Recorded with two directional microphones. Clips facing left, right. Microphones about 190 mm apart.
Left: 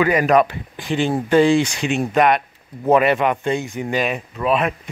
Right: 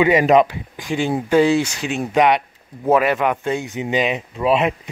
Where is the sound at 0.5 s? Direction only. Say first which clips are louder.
Left 1 dB; 10° right (ahead or behind).